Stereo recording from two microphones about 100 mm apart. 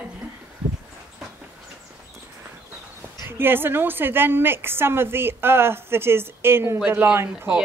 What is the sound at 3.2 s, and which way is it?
A woman's voice, 20° right (ahead or behind).